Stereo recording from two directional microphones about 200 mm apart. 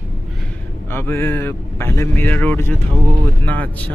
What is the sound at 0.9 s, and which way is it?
Speech, 10° left (ahead or behind).